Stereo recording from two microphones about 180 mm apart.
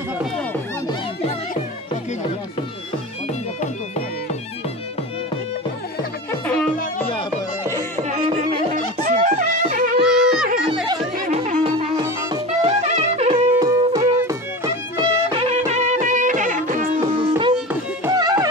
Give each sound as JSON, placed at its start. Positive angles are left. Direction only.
{"t": 6.4, "sound": "music", "side_deg": 5}
{"t": 8.1, "sound": "music", "side_deg": -40}
{"t": 10.0, "sound": "music", "side_deg": -5}
{"t": 11.2, "sound": "music", "side_deg": -40}
{"t": 13.5, "sound": "music", "side_deg": -20}
{"t": 15.3, "sound": "music", "side_deg": -35}
{"t": 18.0, "sound": "music", "side_deg": -20}